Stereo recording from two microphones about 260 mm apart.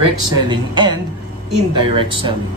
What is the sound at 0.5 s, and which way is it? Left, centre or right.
Speech, centre.